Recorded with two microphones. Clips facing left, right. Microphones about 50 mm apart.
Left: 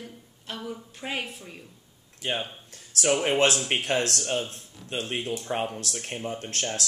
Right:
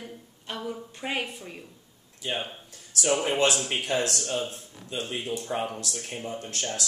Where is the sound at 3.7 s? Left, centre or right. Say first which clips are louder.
Left 1 dB; left.